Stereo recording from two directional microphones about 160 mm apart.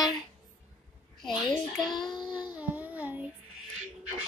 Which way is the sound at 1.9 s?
25° left (ahead or behind).